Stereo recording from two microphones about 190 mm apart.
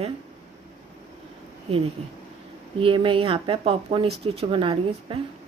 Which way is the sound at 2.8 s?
25° right (ahead or behind).